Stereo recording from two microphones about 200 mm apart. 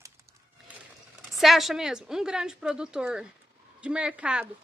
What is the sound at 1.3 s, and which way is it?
Speech, centre (ahead or behind).